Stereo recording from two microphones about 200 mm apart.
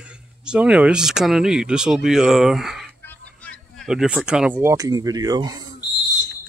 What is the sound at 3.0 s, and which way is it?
Speech, 5° left (ahead or behind).